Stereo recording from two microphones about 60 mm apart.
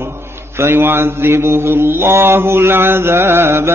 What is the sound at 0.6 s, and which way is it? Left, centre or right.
Mantra, right.